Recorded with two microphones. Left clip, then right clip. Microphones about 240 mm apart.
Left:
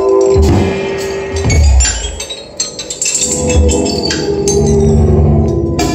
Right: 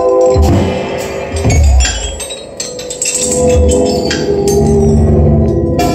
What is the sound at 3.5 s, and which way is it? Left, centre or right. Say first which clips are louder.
Organ: right 3 dB; centre.